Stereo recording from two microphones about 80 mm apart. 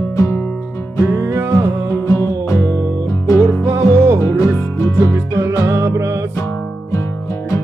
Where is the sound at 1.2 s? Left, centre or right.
Right.